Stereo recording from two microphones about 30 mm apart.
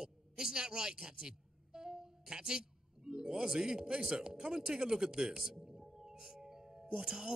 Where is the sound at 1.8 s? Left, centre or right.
Right.